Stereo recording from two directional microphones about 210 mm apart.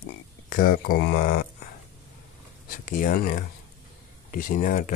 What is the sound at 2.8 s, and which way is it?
Speech, 40° left (ahead or behind).